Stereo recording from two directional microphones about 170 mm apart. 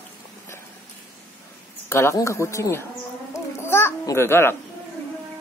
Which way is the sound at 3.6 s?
15° left (ahead or behind).